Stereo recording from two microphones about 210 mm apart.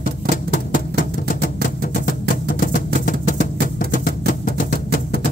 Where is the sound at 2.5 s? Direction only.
40° left (ahead or behind).